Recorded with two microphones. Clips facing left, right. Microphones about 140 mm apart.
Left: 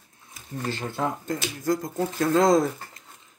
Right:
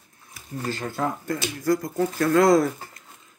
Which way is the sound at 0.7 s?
25° left (ahead or behind).